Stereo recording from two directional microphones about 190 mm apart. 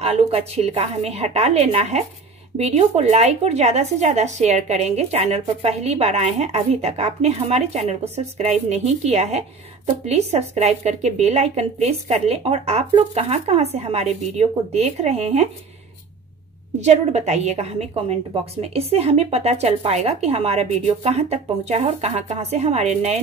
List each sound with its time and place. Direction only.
0.0 s speech: 35° right (ahead or behind)
16.8 s speech: 35° right (ahead or behind)